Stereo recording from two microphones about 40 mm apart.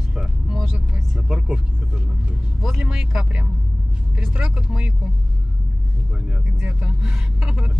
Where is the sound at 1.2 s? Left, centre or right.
Right.